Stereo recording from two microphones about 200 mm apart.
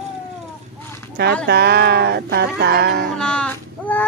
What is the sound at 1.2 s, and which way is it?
Music, 50° right (ahead or behind).